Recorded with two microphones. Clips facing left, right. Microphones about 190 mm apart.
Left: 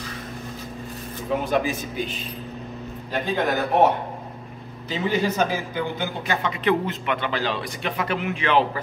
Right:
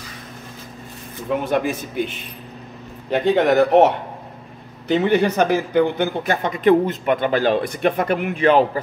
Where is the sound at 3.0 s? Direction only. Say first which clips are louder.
Right 8 dB; 70° right (ahead or behind).